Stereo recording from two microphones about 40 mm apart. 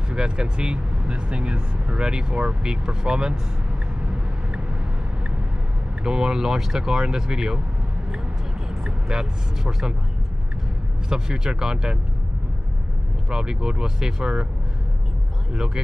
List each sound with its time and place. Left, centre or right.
0.1 s speech: right
6.0 s speech: centre
8.8 s speech: centre
11.1 s speech: centre
13.3 s speech: centre
15.5 s speech: centre